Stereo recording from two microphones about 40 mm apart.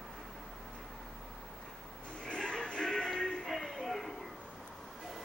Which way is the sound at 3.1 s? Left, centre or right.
Centre.